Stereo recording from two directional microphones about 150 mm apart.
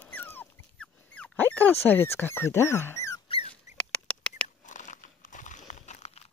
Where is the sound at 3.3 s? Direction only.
40° left (ahead or behind).